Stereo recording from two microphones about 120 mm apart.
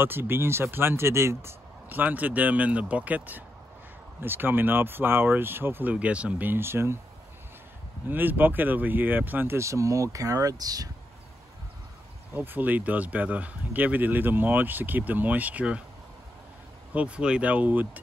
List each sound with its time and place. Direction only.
0.0 s speech: 20° right (ahead or behind)
8.1 s speech: 15° right (ahead or behind); by 10.9 s 30° right (ahead or behind)
12.4 s speech: 15° right (ahead or behind)
16.9 s speech: 10° right (ahead or behind)